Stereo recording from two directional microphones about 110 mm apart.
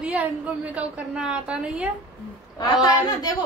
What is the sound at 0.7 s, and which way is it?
A woman's voice, 10° right (ahead or behind).